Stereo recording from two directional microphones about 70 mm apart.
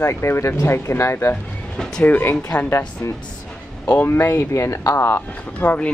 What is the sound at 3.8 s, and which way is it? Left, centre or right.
Speech, left.